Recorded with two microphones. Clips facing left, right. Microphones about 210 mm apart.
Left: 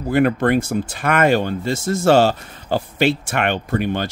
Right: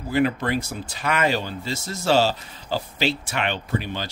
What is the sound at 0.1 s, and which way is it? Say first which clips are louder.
Speech: left 6 dB; 55° left (ahead or behind).